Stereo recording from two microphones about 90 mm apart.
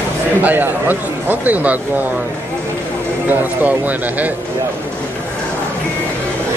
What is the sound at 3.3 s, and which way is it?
Speech, 20° right (ahead or behind).